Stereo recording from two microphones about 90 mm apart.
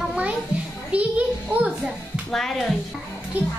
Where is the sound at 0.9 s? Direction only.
15° right (ahead or behind).